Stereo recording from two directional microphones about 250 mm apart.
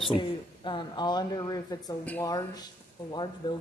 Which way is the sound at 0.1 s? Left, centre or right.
Centre.